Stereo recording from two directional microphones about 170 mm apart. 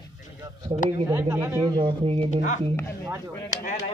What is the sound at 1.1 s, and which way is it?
Speech, 15° right (ahead or behind).